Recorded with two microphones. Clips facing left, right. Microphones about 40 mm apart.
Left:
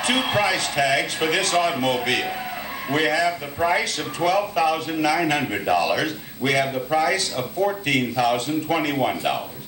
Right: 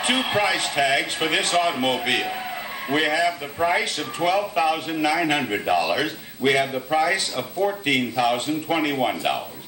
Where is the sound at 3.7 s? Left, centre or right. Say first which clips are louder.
Even; centre.